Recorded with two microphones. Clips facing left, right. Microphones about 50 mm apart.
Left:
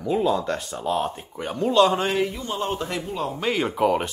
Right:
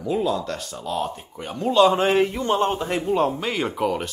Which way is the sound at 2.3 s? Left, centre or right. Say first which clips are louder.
Right 6 dB; right.